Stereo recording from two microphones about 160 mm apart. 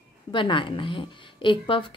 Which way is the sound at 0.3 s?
30° left (ahead or behind).